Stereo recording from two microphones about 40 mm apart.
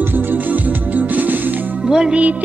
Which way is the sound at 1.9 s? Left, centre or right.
Centre.